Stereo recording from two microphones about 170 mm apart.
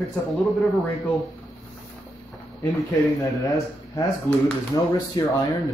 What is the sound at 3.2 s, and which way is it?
Speech, 20° left (ahead or behind).